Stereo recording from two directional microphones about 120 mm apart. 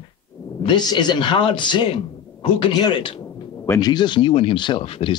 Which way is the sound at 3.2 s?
25° left (ahead or behind).